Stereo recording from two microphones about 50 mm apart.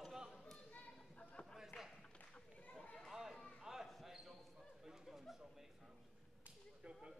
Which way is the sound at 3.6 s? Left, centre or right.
Centre.